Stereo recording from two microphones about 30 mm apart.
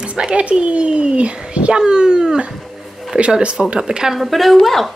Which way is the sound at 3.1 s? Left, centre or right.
Right.